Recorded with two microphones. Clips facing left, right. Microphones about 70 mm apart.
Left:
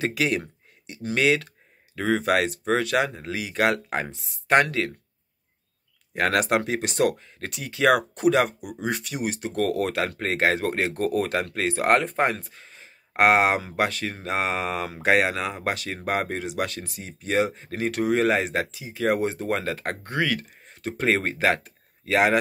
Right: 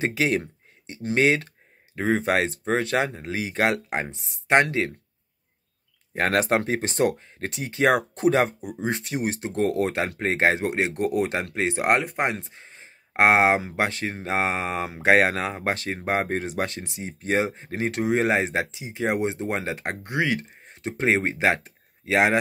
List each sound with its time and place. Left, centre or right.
0.0 s speech: right
6.1 s speech: right
12.0 s speech: centre
12.3 s speech: right